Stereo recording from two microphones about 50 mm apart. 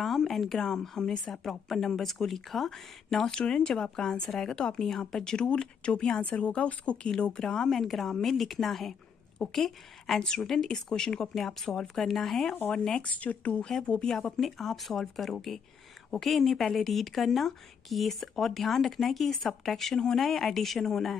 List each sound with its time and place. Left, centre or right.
0.0 s a woman's voice: centre
3.3 s a woman's voice: centre
7.7 s a woman's voice: centre
13.0 s speech: left
13.6 s a woman's voice: centre
14.4 s a woman's voice: centre